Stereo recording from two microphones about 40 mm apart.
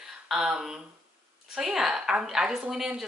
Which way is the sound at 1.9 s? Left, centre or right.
Right.